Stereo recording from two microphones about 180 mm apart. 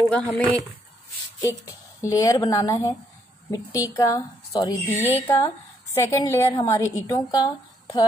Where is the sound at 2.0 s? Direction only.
20° left (ahead or behind).